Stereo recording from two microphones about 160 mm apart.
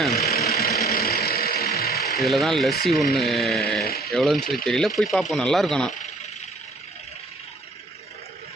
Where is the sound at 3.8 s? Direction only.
75° left (ahead or behind).